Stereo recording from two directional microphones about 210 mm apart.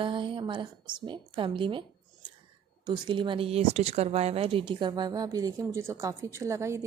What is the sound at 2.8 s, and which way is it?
Speech, 25° right (ahead or behind).